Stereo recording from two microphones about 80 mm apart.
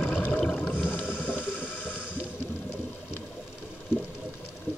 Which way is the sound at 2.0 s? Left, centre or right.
Centre.